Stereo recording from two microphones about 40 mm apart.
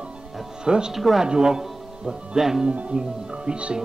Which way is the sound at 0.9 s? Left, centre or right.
Centre.